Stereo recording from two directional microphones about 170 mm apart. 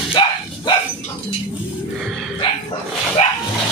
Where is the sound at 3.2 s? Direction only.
40° left (ahead or behind).